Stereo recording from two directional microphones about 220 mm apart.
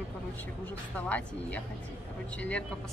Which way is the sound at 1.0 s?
5° left (ahead or behind).